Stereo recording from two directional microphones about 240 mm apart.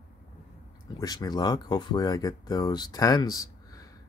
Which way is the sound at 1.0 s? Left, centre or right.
Centre.